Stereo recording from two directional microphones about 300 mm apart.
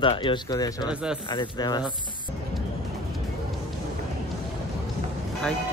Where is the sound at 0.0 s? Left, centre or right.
Centre.